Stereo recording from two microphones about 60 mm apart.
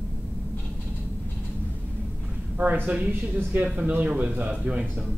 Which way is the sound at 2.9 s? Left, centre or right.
Right.